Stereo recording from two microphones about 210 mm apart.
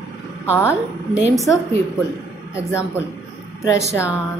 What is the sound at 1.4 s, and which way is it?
Speech, 15° left (ahead or behind).